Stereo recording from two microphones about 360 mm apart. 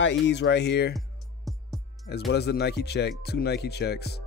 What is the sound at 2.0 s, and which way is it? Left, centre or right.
Speech, left.